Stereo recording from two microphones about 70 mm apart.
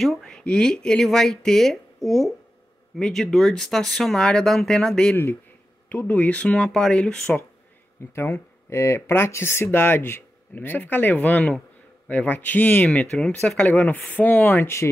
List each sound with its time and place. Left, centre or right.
0.0 s speech: centre
5.1 s speech: left
5.9 s speech: left
8.1 s speech: left